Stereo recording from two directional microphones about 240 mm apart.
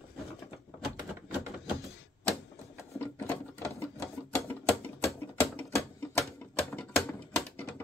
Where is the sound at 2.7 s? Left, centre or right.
Centre.